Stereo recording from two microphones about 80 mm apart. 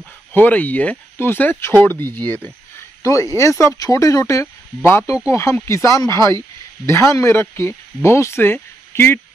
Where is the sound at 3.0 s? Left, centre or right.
Left.